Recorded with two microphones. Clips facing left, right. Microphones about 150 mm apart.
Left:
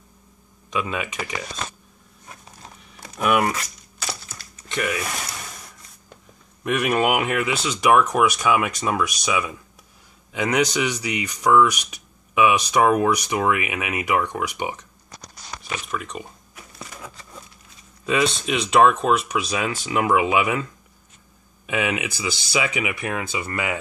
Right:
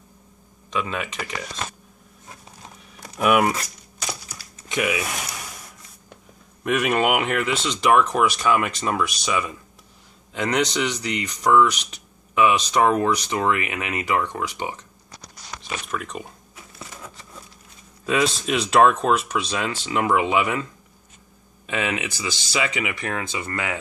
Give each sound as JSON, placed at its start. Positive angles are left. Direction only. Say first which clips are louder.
{"t": 0.7, "sound": "speech", "louder": "left 1 dB", "side_deg": 10}
{"t": 3.2, "sound": "speech", "louder": "right 2 dB", "side_deg": -5}
{"t": 4.1, "sound": "a sound", "louder": "even", "side_deg": -15}
{"t": 6.6, "sound": "speech", "louder": "even", "side_deg": 0}
{"t": 15.9, "sound": "speech", "louder": "right 1 dB", "side_deg": 0}
{"t": 18.0, "sound": "speech", "louder": "even", "side_deg": 0}
{"t": 21.6, "sound": "speech", "louder": "left 2 dB", "side_deg": 10}